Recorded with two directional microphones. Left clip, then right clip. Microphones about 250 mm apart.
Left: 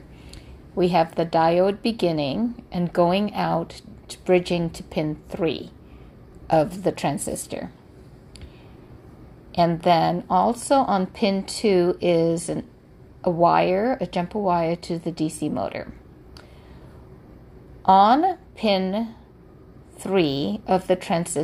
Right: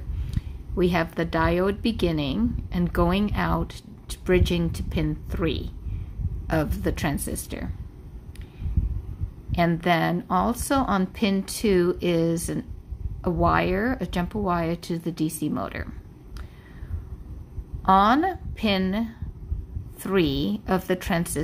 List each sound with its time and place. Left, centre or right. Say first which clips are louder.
0.3 s a woman's voice: even; centre
9.5 s a woman's voice: left 4 dB; centre
17.8 s a woman's voice: left 3 dB; centre